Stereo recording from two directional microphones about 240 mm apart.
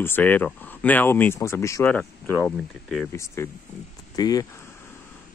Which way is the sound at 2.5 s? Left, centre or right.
Centre.